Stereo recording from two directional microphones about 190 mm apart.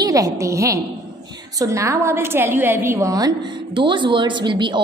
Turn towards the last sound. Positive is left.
turn(degrees=-25)  # may be behind; listen again after turning